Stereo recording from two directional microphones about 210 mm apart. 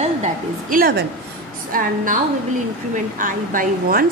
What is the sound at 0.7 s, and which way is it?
A woman's voice, 45° right (ahead or behind).